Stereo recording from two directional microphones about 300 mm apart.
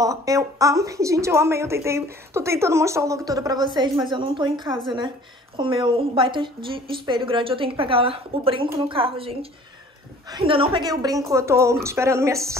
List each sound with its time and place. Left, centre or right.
0.0 s a woman's voice: centre